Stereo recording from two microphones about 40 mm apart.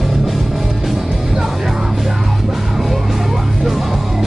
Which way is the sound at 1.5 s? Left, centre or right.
Centre.